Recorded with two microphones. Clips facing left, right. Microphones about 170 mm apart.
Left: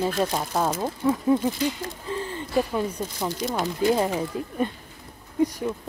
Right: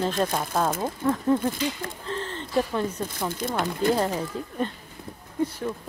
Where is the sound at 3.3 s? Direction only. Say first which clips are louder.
Left 1 dB; 50° right (ahead or behind).